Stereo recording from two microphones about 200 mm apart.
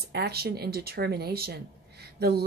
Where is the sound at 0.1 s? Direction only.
55° right (ahead or behind).